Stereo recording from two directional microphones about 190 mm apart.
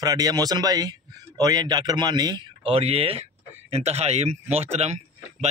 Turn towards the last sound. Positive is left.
turn(degrees=-35)  # may be behind; listen again after turning